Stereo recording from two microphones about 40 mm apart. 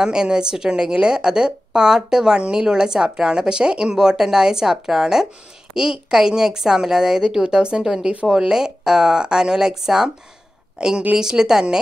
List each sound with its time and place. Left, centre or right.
0.0 s a woman's voice: centre
7.8 s a woman's voice: centre